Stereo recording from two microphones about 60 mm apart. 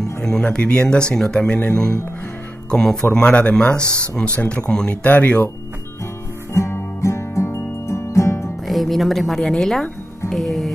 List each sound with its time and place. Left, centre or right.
0.2 s speech: centre
6.5 s music: left
8.6 s a woman's voice: centre